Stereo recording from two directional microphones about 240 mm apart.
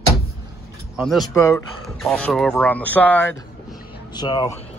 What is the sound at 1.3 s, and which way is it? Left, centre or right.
Speech, centre.